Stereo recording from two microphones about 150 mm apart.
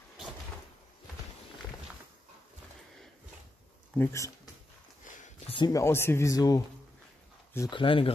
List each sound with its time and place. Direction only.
3.9 s speech: 15° left (ahead or behind)
5.7 s speech: 20° left (ahead or behind)
7.7 s speech: 35° left (ahead or behind)